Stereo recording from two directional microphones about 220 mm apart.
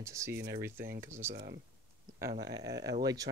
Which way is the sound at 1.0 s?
10° right (ahead or behind).